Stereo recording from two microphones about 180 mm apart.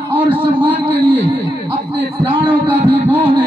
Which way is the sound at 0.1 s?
10° right (ahead or behind).